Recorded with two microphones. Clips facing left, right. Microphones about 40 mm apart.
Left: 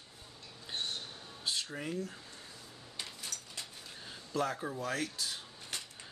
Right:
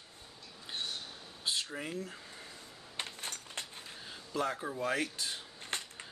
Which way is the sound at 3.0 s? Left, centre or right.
Right.